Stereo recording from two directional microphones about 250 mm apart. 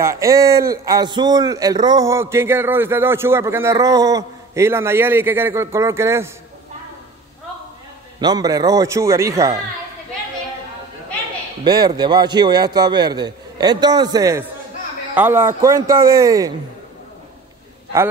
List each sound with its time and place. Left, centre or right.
0.0 s a man's voice: centre
8.2 s a man's voice: centre
11.6 s a man's voice: centre